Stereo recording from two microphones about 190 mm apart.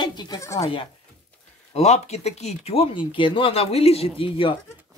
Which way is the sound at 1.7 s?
35° left (ahead or behind).